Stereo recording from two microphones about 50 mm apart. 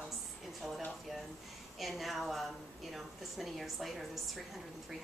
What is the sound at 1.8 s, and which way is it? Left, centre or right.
A woman's voice, centre.